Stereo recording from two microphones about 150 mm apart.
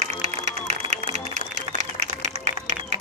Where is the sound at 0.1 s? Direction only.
50° right (ahead or behind).